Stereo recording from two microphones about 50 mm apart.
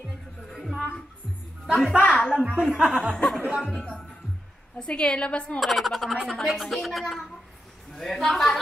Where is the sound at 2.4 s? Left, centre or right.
Right.